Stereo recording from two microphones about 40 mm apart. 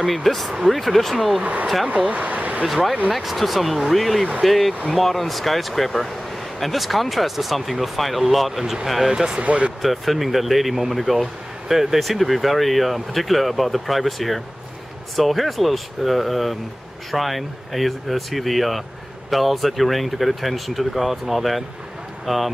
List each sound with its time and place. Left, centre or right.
0.1 s speech: centre
1.4 s speech: right
2.6 s speech: centre
9.0 s speech: centre
9.4 s speech: right
9.8 s speech: centre